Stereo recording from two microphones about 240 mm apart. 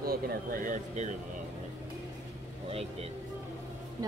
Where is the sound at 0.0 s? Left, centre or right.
Right.